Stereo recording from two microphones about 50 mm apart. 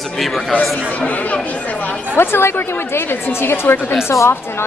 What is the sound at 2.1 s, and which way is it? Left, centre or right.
A woman's voice, left.